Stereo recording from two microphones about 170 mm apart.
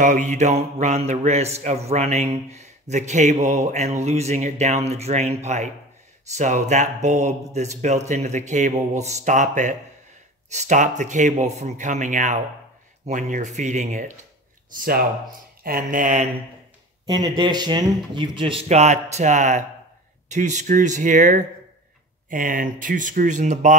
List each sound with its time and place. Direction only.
0.0 s mantra: 45° right (ahead or behind)
14.8 s speech: 60° right (ahead or behind)
15.6 s mantra: 55° right (ahead or behind)
17.0 s speech: 25° right (ahead or behind); by 18.9 s 40° right (ahead or behind)
19.1 s mantra: 45° right (ahead or behind)